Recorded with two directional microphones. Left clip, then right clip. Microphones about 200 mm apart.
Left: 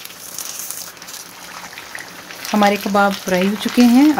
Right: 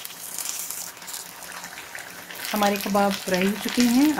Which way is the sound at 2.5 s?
30° left (ahead or behind).